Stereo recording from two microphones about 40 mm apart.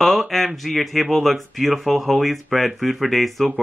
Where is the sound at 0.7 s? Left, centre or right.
Centre.